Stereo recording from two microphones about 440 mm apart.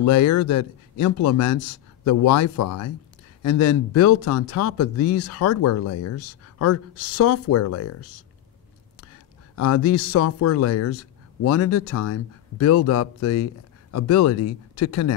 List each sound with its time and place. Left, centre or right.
0.0 s speech: left
9.6 s speech: left